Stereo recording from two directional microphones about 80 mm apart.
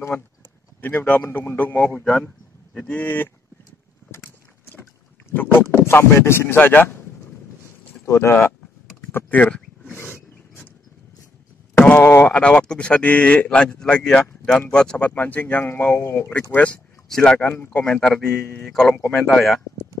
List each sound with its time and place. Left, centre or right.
0.1 s speech: centre
5.3 s speech: left
8.0 s speech: left
9.1 s a sound: centre
11.7 s speech: left
12.3 s speech: centre
17.1 s speech: centre
18.6 s speech: centre